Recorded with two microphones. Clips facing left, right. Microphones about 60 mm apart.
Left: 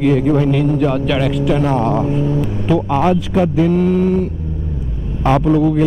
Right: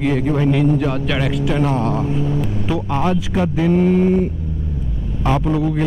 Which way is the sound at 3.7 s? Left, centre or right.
Right.